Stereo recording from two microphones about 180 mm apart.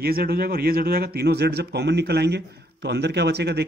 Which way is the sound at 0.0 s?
55° right (ahead or behind).